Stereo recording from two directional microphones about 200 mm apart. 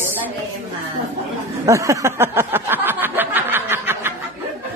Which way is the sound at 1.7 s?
15° right (ahead or behind).